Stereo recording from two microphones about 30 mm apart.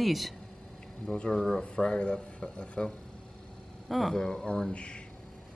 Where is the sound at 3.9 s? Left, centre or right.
Centre.